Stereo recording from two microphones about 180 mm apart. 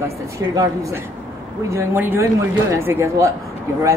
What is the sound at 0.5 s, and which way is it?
Speech, 15° right (ahead or behind).